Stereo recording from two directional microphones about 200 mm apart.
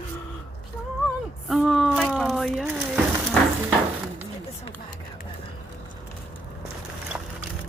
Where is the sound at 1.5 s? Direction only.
Centre (ahead or behind).